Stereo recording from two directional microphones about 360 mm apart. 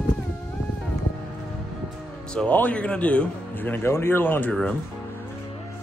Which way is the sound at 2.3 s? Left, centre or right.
Centre.